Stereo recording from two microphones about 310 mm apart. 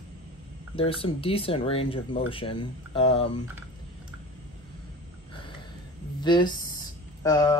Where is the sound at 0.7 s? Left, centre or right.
Centre.